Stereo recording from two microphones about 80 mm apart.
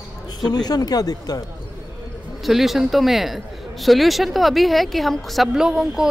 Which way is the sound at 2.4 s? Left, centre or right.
Centre.